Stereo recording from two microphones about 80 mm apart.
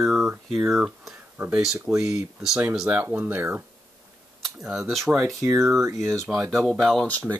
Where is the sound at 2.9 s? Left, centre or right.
Right.